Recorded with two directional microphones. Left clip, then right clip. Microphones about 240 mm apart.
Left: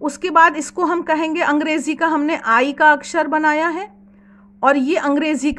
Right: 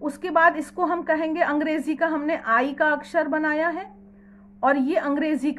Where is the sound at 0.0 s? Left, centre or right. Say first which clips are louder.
Left 6 dB; left.